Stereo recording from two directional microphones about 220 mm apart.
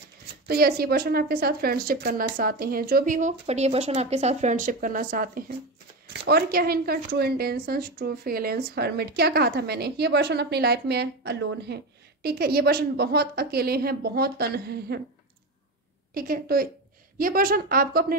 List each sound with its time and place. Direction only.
0.5 s a woman's voice: 45° right (ahead or behind)
16.2 s a woman's voice: 40° right (ahead or behind)